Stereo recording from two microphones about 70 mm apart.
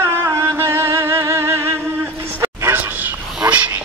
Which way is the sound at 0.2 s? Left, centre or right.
Right.